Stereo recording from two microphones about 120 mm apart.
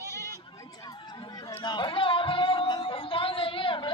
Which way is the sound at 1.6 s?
40° left (ahead or behind).